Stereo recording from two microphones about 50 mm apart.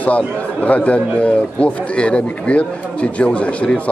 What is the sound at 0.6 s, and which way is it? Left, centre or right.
A man's voice, left.